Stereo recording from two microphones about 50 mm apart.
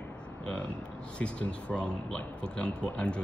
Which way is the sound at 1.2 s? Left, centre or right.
Left.